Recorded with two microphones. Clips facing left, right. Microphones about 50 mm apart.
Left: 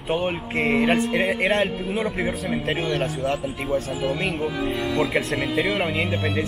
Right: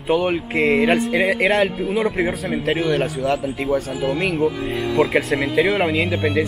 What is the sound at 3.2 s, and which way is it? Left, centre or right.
Speech, right.